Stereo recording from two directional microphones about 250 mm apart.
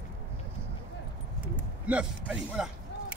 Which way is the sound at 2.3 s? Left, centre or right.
Centre.